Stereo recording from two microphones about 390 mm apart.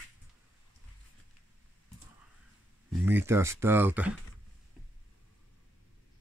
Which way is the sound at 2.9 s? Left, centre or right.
Centre.